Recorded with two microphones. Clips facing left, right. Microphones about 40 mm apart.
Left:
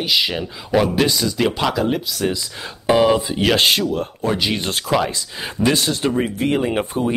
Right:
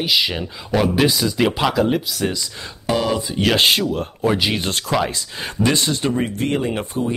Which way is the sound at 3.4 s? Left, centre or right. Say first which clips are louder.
Right 3 dB; centre.